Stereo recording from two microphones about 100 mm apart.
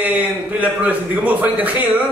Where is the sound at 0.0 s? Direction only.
15° right (ahead or behind).